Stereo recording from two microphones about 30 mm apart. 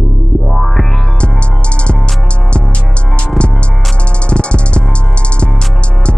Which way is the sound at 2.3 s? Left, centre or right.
Left.